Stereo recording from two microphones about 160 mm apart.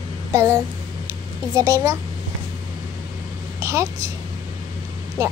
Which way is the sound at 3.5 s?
20° right (ahead or behind).